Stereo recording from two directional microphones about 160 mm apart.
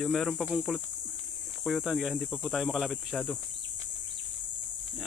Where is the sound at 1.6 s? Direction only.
Centre (ahead or behind).